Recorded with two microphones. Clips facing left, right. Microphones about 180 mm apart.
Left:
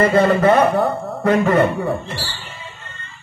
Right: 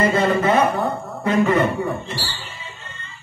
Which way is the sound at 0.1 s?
55° left (ahead or behind).